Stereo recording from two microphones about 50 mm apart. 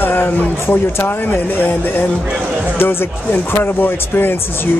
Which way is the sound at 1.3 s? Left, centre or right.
Left.